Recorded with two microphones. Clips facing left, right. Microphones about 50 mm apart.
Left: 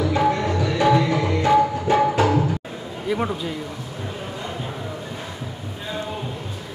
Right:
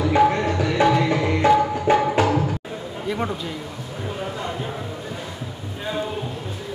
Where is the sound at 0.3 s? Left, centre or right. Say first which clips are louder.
Even; right.